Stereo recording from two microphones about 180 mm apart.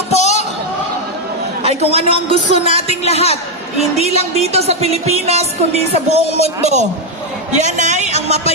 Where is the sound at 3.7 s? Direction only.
35° right (ahead or behind).